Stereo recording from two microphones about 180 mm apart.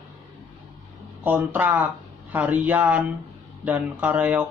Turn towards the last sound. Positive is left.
turn(degrees=-10)  # may be behind; listen again after turning